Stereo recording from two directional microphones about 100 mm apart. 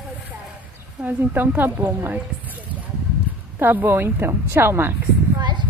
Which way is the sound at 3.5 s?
20° right (ahead or behind).